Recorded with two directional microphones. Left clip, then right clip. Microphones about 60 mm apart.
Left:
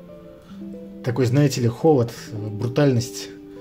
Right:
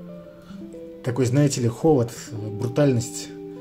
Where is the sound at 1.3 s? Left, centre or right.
Left.